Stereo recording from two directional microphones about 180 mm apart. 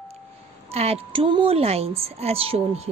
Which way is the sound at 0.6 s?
35° right (ahead or behind).